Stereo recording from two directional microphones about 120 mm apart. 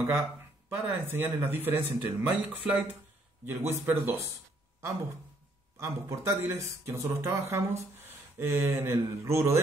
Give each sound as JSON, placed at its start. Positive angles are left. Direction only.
{"t": 0.0, "sound": "speech", "side_deg": -20}
{"t": 5.8, "sound": "speech", "side_deg": -25}